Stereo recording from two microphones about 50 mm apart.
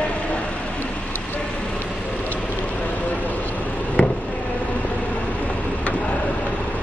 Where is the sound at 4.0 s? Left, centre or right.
Left.